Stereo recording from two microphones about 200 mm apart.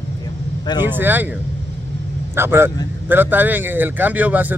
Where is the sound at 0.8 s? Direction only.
10° right (ahead or behind).